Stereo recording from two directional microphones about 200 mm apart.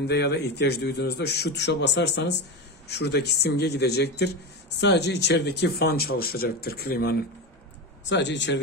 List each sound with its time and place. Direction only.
0.0 s a man's voice: 55° left (ahead or behind)
8.0 s a man's voice: 60° left (ahead or behind)